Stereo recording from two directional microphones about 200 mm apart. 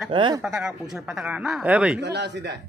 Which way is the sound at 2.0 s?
55° right (ahead or behind).